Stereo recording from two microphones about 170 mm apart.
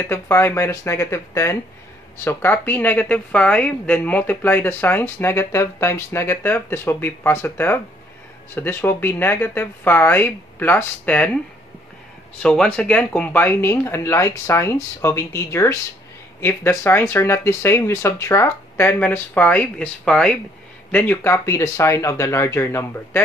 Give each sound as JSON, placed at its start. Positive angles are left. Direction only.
{"t": 0.0, "sound": "speech", "side_deg": 15}
{"t": 12.4, "sound": "speech", "side_deg": 5}